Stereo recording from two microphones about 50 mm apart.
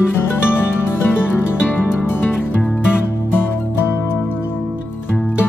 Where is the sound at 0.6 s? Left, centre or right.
Left.